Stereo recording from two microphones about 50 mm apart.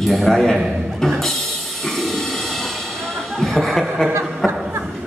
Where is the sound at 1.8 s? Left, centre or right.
Centre.